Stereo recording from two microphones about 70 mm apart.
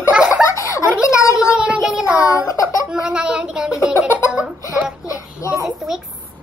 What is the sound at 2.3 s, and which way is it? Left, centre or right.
Speech, left.